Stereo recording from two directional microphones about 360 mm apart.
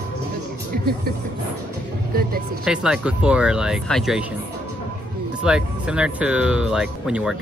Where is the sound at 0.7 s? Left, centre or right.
Right.